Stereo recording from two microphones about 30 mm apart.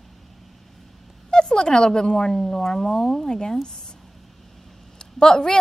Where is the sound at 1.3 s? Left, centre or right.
Left.